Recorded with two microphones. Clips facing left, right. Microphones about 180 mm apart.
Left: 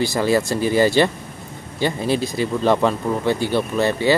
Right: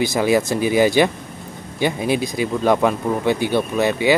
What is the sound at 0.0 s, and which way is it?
Speech, 15° right (ahead or behind).